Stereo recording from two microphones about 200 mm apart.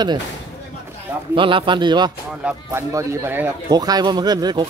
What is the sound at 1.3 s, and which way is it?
Speech, 25° right (ahead or behind).